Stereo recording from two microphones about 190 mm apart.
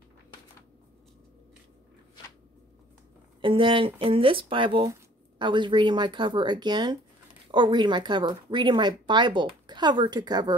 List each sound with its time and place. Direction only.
3.3 s speech: 25° right (ahead or behind)